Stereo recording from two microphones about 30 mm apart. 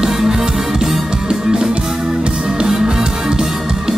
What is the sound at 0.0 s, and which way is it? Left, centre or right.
Music, centre.